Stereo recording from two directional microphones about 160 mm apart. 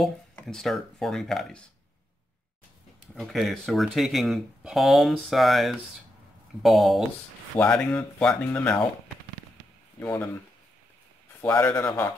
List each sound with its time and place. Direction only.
0.0 s speech: 5° left (ahead or behind)
3.2 s speech: centre (ahead or behind)
9.9 s speech: 10° left (ahead or behind)
11.4 s speech: 10° left (ahead or behind)